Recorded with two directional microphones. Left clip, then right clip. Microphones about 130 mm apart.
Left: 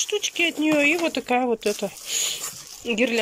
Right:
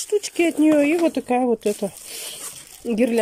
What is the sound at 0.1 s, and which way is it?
Speech, 35° right (ahead or behind).